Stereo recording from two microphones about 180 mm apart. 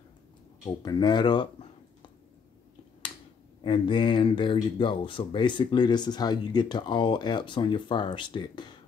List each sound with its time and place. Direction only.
0.7 s speech: 25° left (ahead or behind)
3.6 s speech: 30° left (ahead or behind)